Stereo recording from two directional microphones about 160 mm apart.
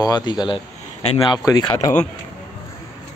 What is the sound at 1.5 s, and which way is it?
Speech, 25° left (ahead or behind).